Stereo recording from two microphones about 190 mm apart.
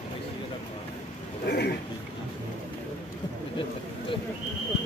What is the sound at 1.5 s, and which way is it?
Speech, 55° left (ahead or behind).